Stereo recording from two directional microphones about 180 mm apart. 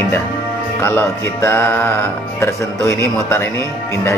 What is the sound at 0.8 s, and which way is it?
Speech, 15° left (ahead or behind).